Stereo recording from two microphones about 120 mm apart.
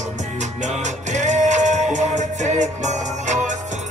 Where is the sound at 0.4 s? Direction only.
80° right.